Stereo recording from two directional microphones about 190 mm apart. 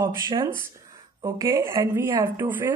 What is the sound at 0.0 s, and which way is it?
Speech, 20° right (ahead or behind).